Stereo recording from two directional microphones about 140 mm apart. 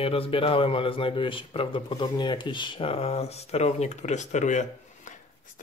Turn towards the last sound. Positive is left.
turn(degrees=60)  # may be behind; listen again after turning